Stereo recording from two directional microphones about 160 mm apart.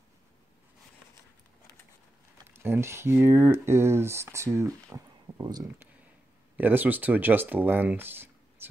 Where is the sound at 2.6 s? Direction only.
15° right (ahead or behind).